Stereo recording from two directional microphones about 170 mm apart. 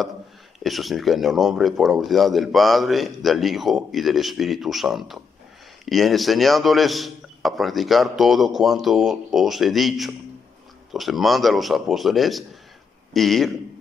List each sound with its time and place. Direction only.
0.7 s a man's voice: centre (ahead or behind)